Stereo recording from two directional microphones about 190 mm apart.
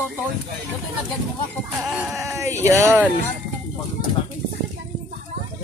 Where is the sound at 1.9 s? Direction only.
Centre (ahead or behind).